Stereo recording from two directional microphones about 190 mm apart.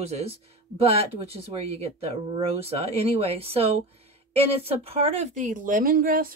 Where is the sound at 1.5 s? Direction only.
30° right (ahead or behind).